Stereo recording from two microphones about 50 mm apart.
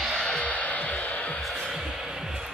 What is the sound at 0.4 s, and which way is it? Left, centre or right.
Music, left.